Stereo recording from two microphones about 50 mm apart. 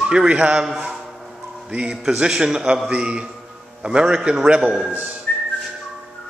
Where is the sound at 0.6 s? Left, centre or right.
Centre.